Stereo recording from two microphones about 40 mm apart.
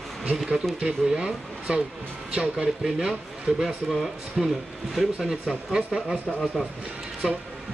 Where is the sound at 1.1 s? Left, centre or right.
Right.